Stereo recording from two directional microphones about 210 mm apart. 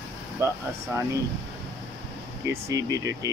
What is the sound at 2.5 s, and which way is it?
Speech, 15° right (ahead or behind).